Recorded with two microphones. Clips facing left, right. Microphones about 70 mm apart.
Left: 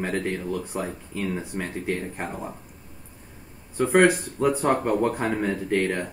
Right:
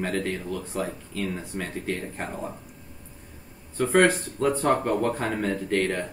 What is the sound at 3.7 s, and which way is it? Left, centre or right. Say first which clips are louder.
Speech: left 2 dB; centre.